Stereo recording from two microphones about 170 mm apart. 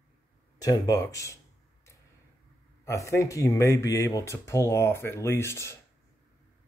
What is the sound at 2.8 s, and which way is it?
Speech, 20° left (ahead or behind).